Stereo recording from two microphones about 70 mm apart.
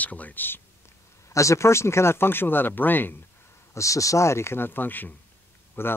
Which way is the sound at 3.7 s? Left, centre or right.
Left.